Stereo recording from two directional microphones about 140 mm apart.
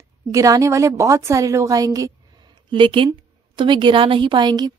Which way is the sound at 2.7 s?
35° right (ahead or behind).